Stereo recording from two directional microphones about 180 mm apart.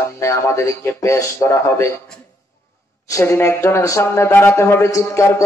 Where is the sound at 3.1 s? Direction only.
15° left (ahead or behind).